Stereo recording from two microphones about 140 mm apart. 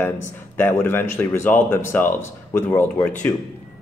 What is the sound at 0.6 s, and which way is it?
A man's voice, 15° left (ahead or behind).